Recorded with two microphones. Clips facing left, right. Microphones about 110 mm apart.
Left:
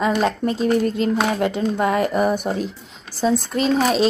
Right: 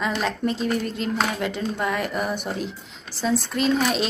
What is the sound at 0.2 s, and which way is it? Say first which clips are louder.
Speech: left 5 dB; 40° left (ahead or behind).